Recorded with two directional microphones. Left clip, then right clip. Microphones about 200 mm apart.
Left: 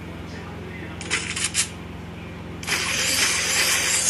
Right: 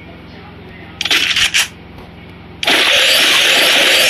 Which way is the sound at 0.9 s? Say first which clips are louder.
Right 15 dB; 30° right (ahead or behind).